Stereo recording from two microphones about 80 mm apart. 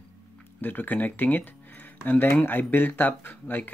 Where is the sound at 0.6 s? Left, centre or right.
Left.